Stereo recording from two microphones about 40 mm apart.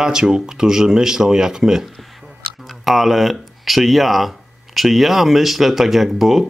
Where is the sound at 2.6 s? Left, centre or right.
Centre.